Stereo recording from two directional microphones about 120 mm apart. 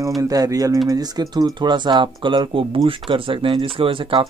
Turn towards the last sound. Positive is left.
turn(degrees=-45)  # may be behind; listen again after turning